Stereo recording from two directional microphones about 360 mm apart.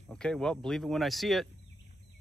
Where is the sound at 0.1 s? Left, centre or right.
Centre.